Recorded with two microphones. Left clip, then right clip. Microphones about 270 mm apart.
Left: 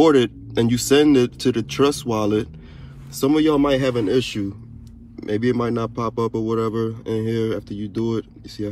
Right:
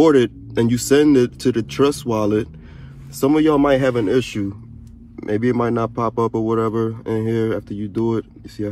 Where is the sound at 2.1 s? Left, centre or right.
Centre.